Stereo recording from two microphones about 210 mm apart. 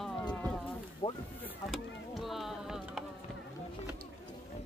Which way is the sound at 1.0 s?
25° left (ahead or behind).